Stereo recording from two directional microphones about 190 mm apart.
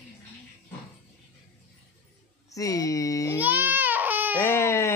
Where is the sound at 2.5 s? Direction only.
15° left (ahead or behind).